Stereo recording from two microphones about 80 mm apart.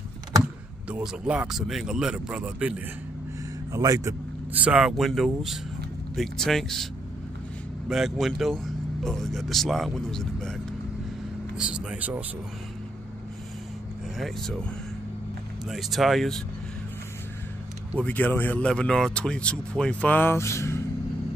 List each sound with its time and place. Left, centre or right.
1.0 s speech: centre
3.7 s speech: right
4.6 s speech: centre
7.9 s speech: centre
11.5 s speech: centre
14.1 s speech: centre
15.7 s speech: centre
17.9 s speech: centre
18.6 s speech: centre; by 20.8 s left